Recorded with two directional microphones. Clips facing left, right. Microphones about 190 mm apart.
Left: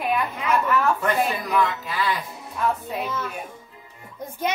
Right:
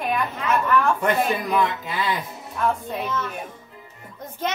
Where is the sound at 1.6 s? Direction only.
20° right (ahead or behind).